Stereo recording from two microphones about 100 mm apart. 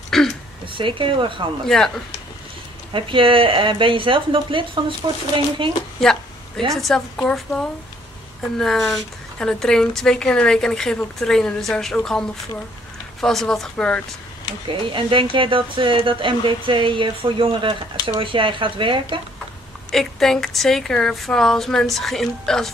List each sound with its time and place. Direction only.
0.1 s a sound: 5° left (ahead or behind)
0.7 s speech: 60° right (ahead or behind)
2.9 s speech: 60° right (ahead or behind)
5.9 s a sound: 5° left (ahead or behind)
6.7 s a woman's voice: centre (ahead or behind)
14.9 s speech: 55° right (ahead or behind)
19.9 s a woman's voice: 5° left (ahead or behind)